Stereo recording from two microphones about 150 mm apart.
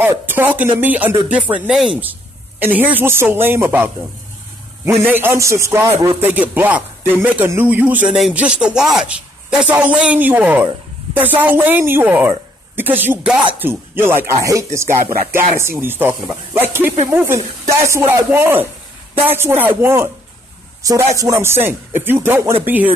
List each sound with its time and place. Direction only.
0.0 s speech: 15° right (ahead or behind)
5.0 s speech: 15° right (ahead or behind)
21.2 s speech: 15° right (ahead or behind)